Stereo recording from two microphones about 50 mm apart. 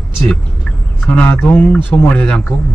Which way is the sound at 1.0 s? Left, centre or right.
Left.